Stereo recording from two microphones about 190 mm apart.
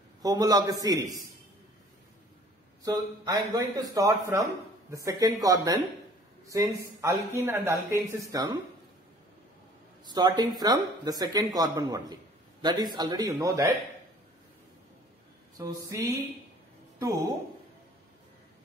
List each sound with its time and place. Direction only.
0.2 s speech: 20° right (ahead or behind)
2.8 s speech: 20° right (ahead or behind)
10.0 s speech: 20° right (ahead or behind)
15.5 s speech: 20° right (ahead or behind)